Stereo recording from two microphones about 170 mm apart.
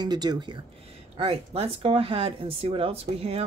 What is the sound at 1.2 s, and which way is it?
Speech, 35° right (ahead or behind).